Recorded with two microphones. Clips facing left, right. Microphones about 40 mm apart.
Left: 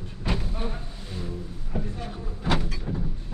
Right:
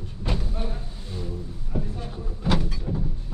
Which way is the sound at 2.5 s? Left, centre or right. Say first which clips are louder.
Right 1 dB; centre.